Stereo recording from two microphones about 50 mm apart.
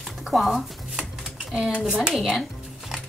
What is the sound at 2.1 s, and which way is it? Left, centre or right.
Speech, centre.